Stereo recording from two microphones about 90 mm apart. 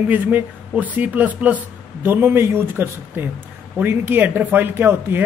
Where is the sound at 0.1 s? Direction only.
20° right (ahead or behind).